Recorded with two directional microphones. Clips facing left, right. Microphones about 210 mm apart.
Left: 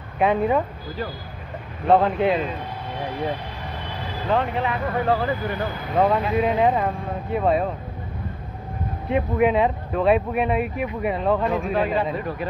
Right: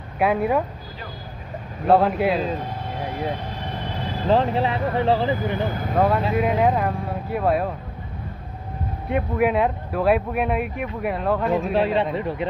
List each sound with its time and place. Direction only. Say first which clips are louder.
0.2 s speech: left 1 dB; 5° right (ahead or behind)
1.9 s speech: even; 5° right (ahead or behind)
4.3 s speech: right 3 dB; 35° right (ahead or behind)
5.9 s speech: left 1 dB; 5° right (ahead or behind)
9.1 s speech: left 1 dB; centre (ahead or behind)
11.7 s speech: right 2 dB; 30° right (ahead or behind)